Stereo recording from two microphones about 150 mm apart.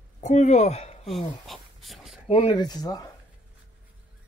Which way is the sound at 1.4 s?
Centre (ahead or behind).